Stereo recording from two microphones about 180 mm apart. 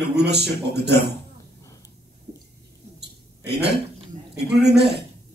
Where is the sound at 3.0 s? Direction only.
65° right (ahead or behind).